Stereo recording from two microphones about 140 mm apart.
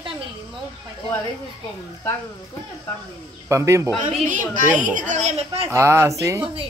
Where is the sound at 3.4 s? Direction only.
20° right (ahead or behind).